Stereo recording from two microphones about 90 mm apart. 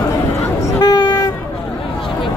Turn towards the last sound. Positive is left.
turn(degrees=55)  # may be behind; listen again after turning